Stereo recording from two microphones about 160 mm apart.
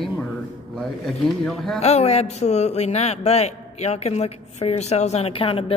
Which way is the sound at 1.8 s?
40° left (ahead or behind).